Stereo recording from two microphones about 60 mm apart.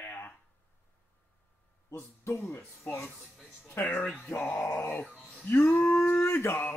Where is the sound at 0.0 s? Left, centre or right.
Left.